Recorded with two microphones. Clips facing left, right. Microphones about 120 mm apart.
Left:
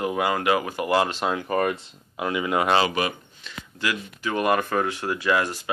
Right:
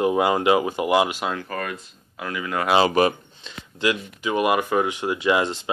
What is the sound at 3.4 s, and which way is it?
Speech, 20° right (ahead or behind).